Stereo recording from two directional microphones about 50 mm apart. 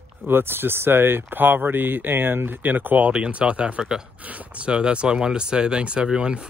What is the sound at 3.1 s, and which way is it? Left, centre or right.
Speech, right.